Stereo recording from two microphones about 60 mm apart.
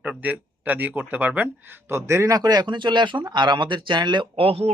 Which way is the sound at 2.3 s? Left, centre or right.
Right.